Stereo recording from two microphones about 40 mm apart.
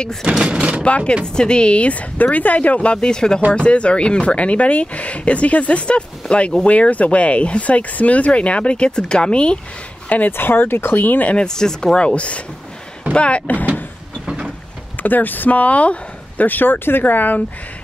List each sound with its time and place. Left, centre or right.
0.3 s speech: right
0.8 s speech: left
1.2 s speech: centre
3.0 s speech: centre
10.0 s speech: left
10.3 s speech: left
11.3 s speech: centre
14.2 s vehicle: right
15.0 s speech: left
16.4 s speech: left